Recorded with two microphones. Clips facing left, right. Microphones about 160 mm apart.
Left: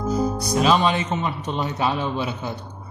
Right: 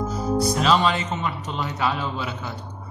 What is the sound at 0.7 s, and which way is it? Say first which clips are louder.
A man's voice: left 1 dB; 20° left (ahead or behind).